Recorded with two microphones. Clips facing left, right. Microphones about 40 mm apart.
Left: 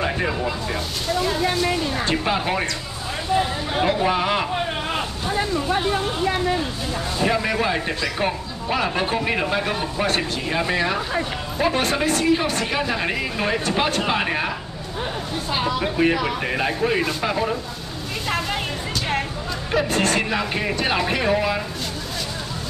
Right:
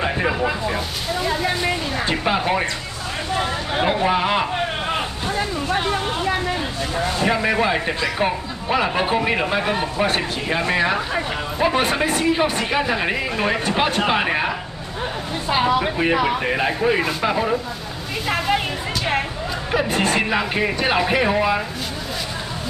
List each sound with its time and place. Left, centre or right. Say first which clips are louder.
0.0 s speech: right 2 dB; centre
3.7 s speech: right 1 dB; centre
5.8 s vehicle: even; centre
7.2 s speech: right 1 dB; centre
19.7 s speech: even; centre